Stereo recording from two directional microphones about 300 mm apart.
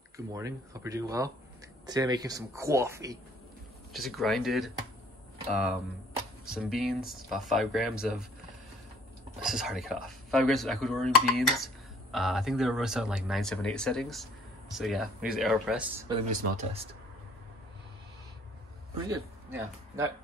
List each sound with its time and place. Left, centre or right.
0.3 s speech: centre
3.9 s speech: centre
6.4 s speech: centre
9.4 s speech: centre
16.1 s speech: centre
19.0 s speech: centre